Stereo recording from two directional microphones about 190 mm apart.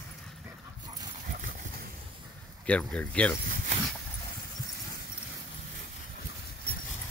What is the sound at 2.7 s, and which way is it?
Speech, 5° left (ahead or behind).